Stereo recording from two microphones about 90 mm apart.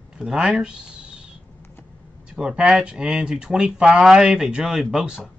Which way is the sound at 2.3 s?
10° right (ahead or behind).